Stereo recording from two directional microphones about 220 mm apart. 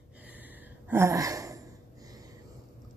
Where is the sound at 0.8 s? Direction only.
10° right (ahead or behind).